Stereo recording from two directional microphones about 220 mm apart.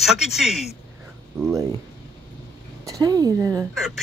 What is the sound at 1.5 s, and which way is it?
Speech, 15° right (ahead or behind).